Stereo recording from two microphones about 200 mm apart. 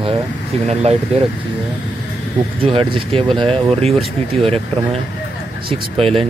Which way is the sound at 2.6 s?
25° right (ahead or behind).